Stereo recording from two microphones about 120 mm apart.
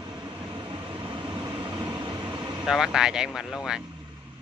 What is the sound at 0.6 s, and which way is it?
Vehicle, 40° right (ahead or behind).